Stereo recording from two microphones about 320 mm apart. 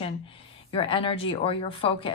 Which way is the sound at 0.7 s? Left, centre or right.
Centre.